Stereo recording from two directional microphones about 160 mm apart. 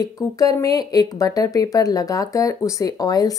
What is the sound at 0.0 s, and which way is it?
Speech, 20° left (ahead or behind).